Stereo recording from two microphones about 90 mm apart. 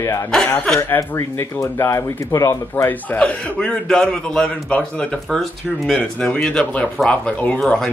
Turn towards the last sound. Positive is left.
turn(degrees=5)  # may be behind; listen again after turning